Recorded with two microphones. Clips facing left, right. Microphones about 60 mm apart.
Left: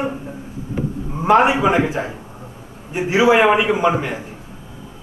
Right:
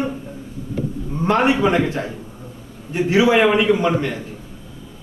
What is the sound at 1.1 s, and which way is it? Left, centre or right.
Speech, centre.